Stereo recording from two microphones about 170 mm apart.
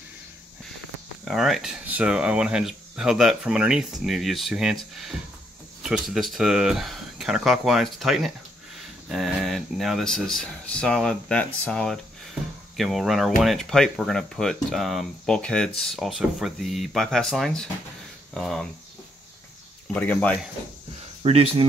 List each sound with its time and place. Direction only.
1.2 s speech: centre (ahead or behind)
19.9 s speech: 10° left (ahead or behind)
21.2 s speech: 35° right (ahead or behind)